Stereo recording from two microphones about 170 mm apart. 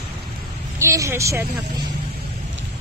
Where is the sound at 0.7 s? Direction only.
15° right (ahead or behind).